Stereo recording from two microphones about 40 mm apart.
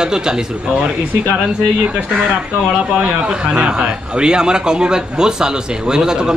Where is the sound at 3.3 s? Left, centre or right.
Centre.